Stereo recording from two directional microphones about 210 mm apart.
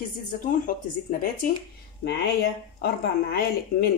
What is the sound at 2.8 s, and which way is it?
A woman's voice, 45° left (ahead or behind).